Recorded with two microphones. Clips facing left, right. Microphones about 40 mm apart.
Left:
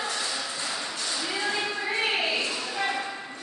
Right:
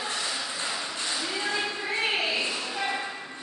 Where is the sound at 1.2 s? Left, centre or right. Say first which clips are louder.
Left 2 dB; centre.